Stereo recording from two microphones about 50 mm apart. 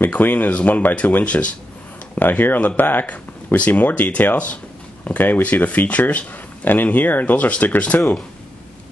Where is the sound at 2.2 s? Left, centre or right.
Left.